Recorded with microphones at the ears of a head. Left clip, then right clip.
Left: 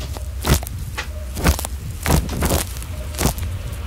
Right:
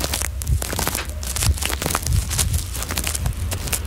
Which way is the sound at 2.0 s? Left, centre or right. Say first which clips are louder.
Left 5 dB; left.